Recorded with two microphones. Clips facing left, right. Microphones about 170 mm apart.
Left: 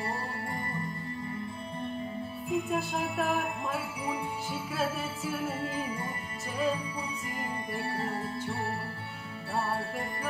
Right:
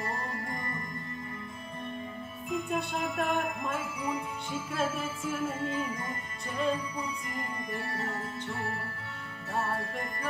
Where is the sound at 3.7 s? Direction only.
30° left (ahead or behind).